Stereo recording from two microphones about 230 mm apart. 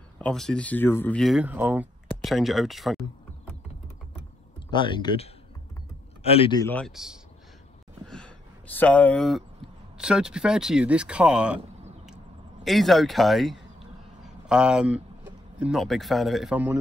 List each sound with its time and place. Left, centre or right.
0.2 s speech: centre
4.7 s speech: left
6.6 s speech: centre
8.7 s speech: centre
12.6 s a sound: centre
15.6 s speech: centre